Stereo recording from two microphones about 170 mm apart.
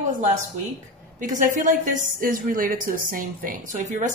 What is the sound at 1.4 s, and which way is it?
A woman's voice, 50° right (ahead or behind).